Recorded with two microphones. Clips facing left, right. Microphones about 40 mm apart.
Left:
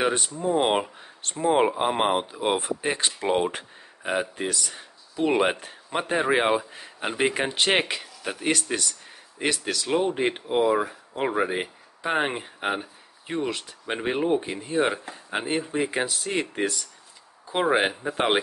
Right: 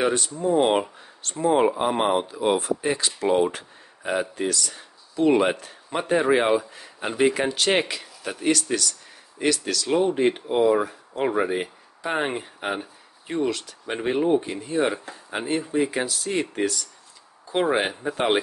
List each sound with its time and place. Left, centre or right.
0.0 s speech: left
8.0 s speech: centre
9.8 s speech: centre